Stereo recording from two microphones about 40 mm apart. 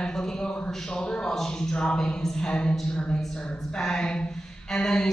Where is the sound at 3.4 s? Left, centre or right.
Centre.